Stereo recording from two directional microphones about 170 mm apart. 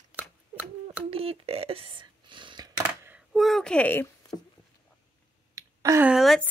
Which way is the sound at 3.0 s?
10° right (ahead or behind).